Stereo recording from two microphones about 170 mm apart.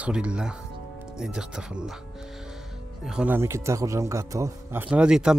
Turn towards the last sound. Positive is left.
turn(degrees=-5)  # may be behind; listen again after turning